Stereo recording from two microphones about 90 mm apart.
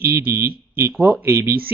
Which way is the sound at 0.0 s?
25° right (ahead or behind).